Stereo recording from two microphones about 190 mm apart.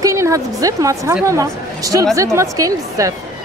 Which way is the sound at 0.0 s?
15° right (ahead or behind).